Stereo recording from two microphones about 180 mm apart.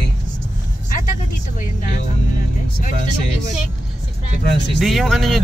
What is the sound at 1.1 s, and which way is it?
Speech, 45° left (ahead or behind).